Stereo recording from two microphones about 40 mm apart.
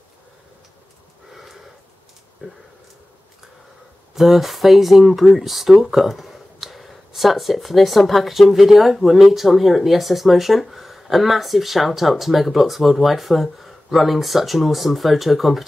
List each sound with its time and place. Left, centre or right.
1.3 s a sound: centre
2.4 s speech: right
4.1 s speech: centre